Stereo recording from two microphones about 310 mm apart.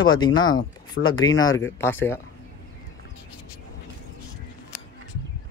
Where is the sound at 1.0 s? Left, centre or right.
Left.